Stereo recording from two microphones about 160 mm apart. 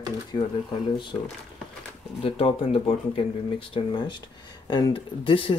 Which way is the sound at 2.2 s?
35° left (ahead or behind).